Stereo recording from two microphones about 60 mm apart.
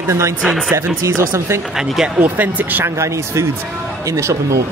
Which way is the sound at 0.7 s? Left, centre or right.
Right.